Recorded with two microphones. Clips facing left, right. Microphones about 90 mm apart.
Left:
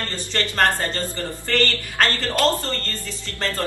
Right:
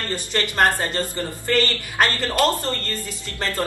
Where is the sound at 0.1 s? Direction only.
20° right (ahead or behind).